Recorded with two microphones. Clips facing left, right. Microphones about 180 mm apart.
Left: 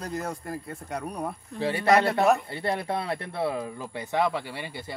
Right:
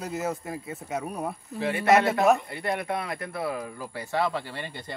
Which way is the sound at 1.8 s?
5° right (ahead or behind).